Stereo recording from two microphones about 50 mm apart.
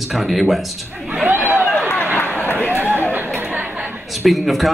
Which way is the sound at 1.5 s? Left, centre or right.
Centre.